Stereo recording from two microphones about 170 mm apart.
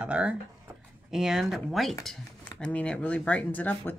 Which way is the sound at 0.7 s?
15° right (ahead or behind).